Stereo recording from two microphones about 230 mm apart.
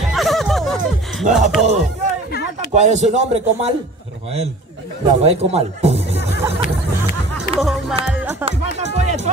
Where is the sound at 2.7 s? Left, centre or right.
Right.